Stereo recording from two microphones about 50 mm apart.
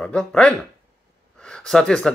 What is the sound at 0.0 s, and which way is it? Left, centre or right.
Speech, centre.